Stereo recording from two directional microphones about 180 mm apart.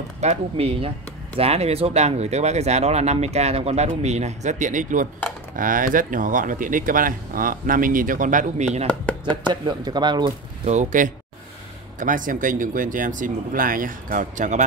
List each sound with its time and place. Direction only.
0.2 s speech: 35° right (ahead or behind)
9.5 s speech: 25° right (ahead or behind)
10.7 s speech: 45° right (ahead or behind)